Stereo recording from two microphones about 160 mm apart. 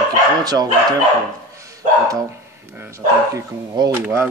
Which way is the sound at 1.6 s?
20° right (ahead or behind).